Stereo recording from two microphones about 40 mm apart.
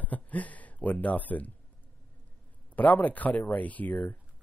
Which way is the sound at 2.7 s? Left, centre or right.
Left.